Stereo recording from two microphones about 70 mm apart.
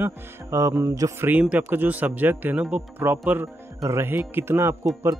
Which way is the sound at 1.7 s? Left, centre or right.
Right.